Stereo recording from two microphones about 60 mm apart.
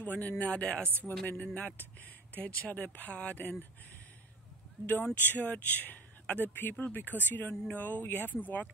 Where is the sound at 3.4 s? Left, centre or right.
Left.